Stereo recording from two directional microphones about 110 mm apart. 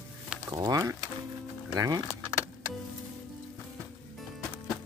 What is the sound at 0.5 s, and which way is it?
Speech, 30° right (ahead or behind).